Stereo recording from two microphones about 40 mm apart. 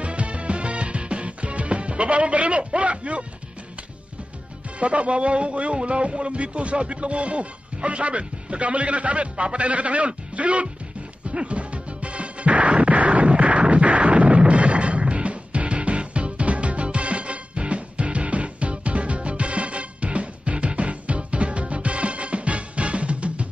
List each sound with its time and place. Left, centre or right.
0.0 s music: right
4.7 s speech: right
11.2 s music: right